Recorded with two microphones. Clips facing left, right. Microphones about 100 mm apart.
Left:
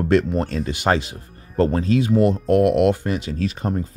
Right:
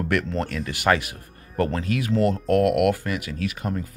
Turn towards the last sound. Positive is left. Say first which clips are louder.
# left 4 dB
turn(degrees=30)  # may be behind; listen again after turning